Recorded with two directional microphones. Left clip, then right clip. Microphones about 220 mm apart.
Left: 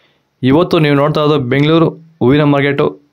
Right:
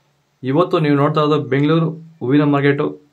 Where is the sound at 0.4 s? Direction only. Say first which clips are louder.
Left 5 dB; 45° left (ahead or behind).